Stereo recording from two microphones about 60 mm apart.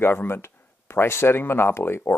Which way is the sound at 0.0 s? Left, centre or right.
Left.